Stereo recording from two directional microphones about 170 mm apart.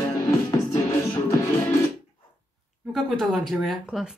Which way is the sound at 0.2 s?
20° left (ahead or behind).